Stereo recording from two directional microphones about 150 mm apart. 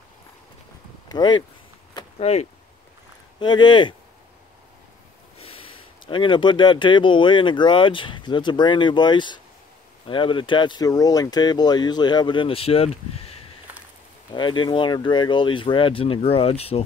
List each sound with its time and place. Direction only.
1.0 s speech: 30° left (ahead or behind)
2.1 s speech: 45° left (ahead or behind)
3.3 s speech: 30° left (ahead or behind)
5.4 s speech: 40° left (ahead or behind)
14.3 s speech: 30° left (ahead or behind)